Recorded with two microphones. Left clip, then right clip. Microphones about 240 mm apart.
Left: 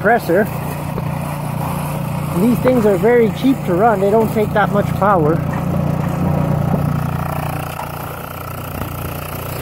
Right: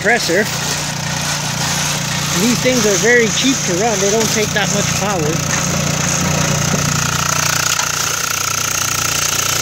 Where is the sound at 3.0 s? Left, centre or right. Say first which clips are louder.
Right 1 dB; centre.